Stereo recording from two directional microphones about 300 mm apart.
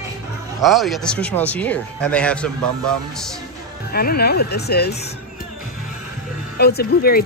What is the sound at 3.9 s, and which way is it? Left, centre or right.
Speech, left.